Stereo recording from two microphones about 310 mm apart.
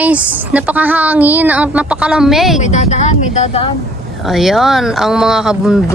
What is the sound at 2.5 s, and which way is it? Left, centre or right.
Speech, left.